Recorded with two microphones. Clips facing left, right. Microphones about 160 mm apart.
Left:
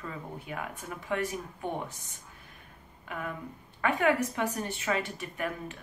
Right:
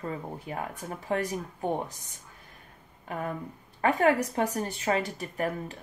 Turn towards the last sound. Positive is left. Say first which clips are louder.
# right 4 dB
turn(degrees=-35)  # may be behind; listen again after turning